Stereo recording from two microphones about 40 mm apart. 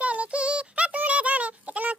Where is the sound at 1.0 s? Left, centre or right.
Right.